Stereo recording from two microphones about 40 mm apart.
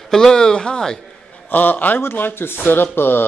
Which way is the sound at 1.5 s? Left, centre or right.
Left.